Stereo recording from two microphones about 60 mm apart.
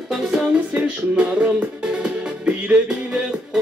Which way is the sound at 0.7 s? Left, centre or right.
Right.